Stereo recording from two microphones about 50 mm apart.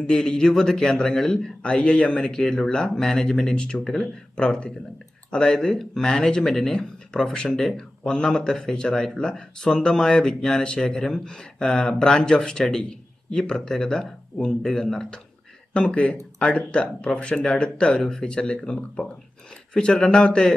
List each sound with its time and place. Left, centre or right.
0.0 s speech: centre
1.6 s speech: left
15.7 s speech: left